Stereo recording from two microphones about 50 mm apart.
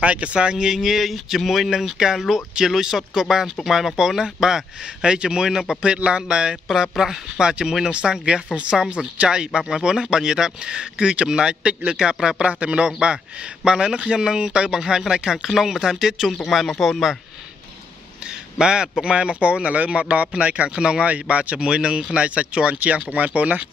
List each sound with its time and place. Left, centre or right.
0.0 s a man's voice: right; by 16.3 s centre
16.6 s speech: centre
18.2 s a man's voice: centre